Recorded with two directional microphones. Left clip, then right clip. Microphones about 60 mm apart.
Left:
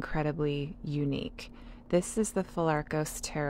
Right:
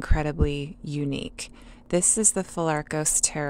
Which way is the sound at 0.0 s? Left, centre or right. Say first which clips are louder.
Right 4 dB; right.